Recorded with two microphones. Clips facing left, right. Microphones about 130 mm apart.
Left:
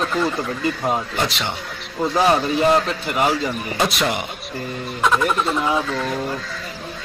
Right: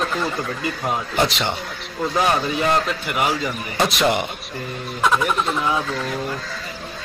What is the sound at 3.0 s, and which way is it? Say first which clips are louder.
Speech: left 2 dB; 30° left (ahead or behind).